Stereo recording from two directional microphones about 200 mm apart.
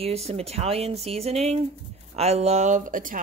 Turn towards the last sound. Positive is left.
turn(degrees=-40)  # may be behind; listen again after turning